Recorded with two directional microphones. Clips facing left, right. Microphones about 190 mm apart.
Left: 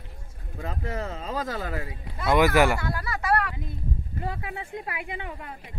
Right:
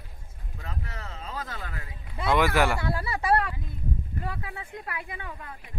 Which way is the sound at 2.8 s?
30° right (ahead or behind).